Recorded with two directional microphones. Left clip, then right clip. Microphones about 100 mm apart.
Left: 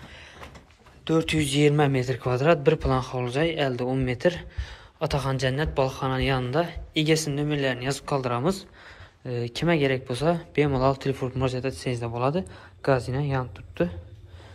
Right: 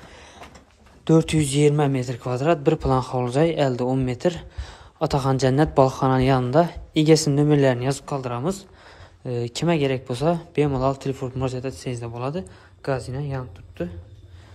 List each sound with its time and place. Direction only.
1.0 s speech: 55° right (ahead or behind); by 7.8 s 70° right (ahead or behind)
8.0 s speech: 25° right (ahead or behind)
9.2 s speech: 40° right (ahead or behind); by 13.8 s 20° right (ahead or behind)